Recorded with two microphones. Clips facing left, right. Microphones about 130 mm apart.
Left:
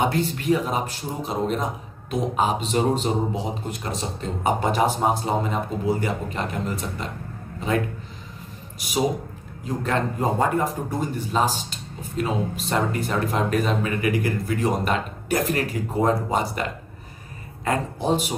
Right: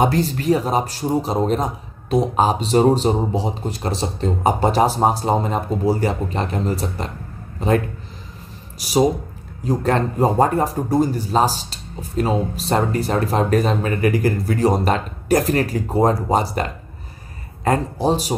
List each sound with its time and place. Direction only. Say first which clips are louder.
0.0 s a man's voice: right 5 dB; 35° right (ahead or behind)
17.6 s a man's voice: right 5 dB; 35° right (ahead or behind)